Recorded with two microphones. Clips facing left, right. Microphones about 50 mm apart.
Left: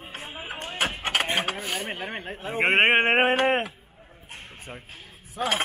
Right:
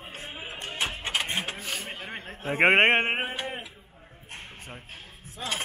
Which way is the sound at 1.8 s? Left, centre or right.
Left.